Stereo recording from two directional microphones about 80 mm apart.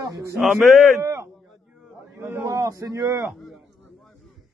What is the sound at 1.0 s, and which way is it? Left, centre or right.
A man's voice, right.